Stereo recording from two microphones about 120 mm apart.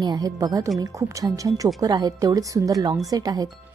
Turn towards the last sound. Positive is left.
turn(degrees=-30)  # may be behind; listen again after turning